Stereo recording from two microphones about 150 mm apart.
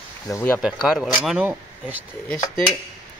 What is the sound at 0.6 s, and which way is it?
Speech, 5° right (ahead or behind).